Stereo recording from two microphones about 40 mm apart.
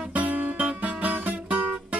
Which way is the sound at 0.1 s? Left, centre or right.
Right.